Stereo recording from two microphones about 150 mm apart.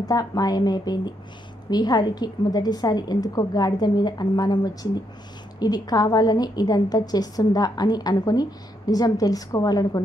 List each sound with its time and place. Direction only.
0.0 s a woman's voice: 25° left (ahead or behind)